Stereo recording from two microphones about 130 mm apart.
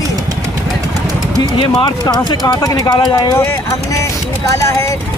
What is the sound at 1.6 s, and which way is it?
Speech, 35° left (ahead or behind).